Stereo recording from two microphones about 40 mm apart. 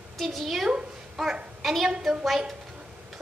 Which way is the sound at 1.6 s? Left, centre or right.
Centre.